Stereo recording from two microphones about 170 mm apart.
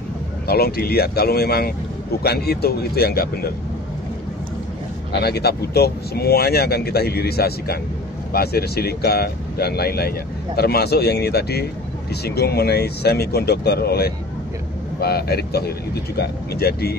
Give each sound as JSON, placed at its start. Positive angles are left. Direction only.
{"t": 0.5, "sound": "speech", "side_deg": 65}
{"t": 5.1, "sound": "speech", "side_deg": 70}